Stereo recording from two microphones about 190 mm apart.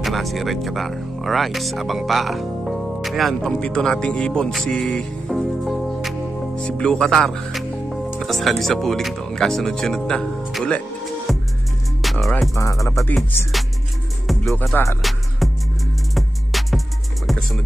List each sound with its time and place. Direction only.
0.0 s speech: centre (ahead or behind)
11.3 s music: centre (ahead or behind)
12.5 s music: 15° left (ahead or behind)
14.2 s music: centre (ahead or behind)
17.3 s speech: centre (ahead or behind)